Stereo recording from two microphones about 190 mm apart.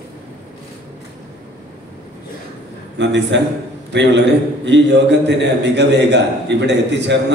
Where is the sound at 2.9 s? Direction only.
70° right (ahead or behind).